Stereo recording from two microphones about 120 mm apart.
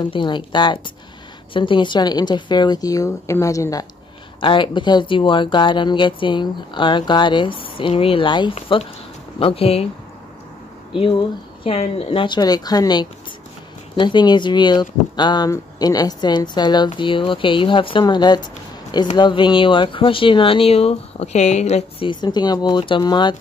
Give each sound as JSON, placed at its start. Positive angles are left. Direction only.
{"t": 0.0, "sound": "speech", "side_deg": 40}
{"t": 4.4, "sound": "speech", "side_deg": 45}
{"t": 11.0, "sound": "speech", "side_deg": 45}
{"t": 12.4, "sound": "speech", "side_deg": 35}
{"t": 22.0, "sound": "speech", "side_deg": 40}